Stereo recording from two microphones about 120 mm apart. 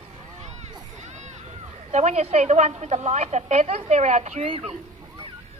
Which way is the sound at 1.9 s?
70° right (ahead or behind).